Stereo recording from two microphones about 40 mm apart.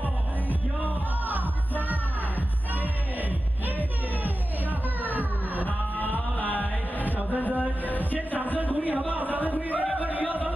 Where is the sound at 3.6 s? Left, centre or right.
Right.